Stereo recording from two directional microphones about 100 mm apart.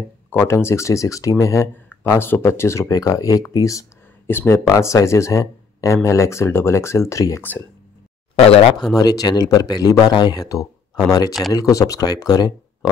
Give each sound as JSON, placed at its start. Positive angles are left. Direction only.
{"t": 0.3, "sound": "speech", "side_deg": 25}
{"t": 4.3, "sound": "speech", "side_deg": 20}
{"t": 8.4, "sound": "speech", "side_deg": 65}
{"t": 8.9, "sound": "speech", "side_deg": 40}